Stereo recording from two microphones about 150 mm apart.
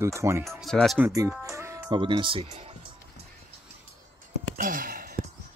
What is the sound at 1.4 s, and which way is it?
Music, 20° right (ahead or behind).